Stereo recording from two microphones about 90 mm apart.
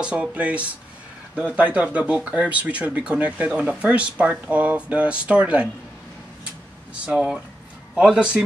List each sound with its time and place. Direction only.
0.0 s speech: 15° right (ahead or behind)
7.1 s speech: 10° right (ahead or behind)